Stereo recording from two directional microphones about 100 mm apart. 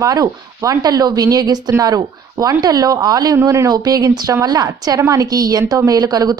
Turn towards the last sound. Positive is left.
turn(degrees=-40)  # may be behind; listen again after turning